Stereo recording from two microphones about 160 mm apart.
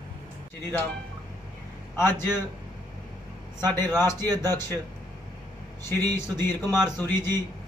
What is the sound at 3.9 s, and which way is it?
Speech, 15° left (ahead or behind).